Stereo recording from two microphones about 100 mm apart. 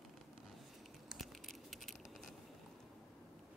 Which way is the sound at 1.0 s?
Centre (ahead or behind).